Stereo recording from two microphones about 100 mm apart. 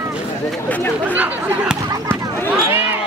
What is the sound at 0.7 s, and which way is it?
Chatter, 20° left (ahead or behind).